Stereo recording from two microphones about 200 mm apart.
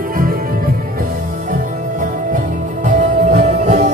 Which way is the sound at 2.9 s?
35° right (ahead or behind).